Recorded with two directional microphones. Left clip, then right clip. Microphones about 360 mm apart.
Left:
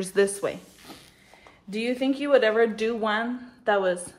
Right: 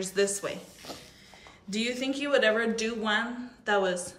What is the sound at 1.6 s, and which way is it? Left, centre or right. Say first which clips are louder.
A woman's voice: left 4 dB; centre.